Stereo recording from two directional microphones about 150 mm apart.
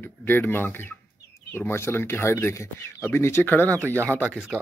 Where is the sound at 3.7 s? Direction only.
15° right (ahead or behind).